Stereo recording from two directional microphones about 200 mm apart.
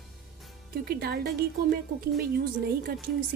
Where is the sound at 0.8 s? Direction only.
50° right (ahead or behind).